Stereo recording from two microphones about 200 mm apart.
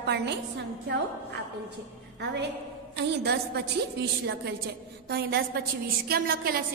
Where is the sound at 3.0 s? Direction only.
60° right (ahead or behind).